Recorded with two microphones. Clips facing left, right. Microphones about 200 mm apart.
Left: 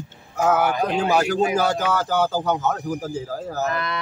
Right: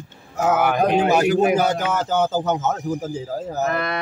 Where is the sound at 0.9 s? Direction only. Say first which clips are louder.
Right 3 dB; 20° right (ahead or behind).